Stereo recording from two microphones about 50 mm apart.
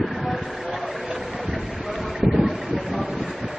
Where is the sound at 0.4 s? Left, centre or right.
Centre.